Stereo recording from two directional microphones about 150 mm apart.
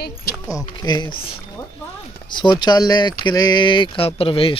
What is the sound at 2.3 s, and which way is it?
Speech, 30° left (ahead or behind).